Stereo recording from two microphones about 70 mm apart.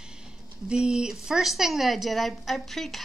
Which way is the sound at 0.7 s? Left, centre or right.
Centre.